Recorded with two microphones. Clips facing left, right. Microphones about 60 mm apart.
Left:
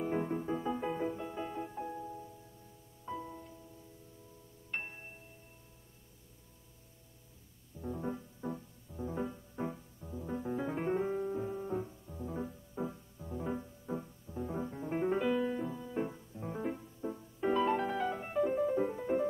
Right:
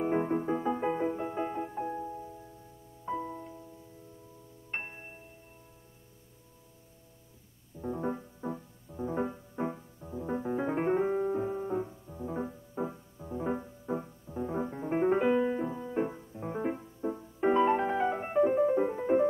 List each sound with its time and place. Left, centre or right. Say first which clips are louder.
0.0 s music: right 6 dB; right
4.6 s music: right 2 dB; right
7.8 s music: right 5 dB; right